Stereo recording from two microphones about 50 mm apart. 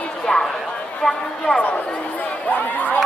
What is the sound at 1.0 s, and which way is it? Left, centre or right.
Speech, centre.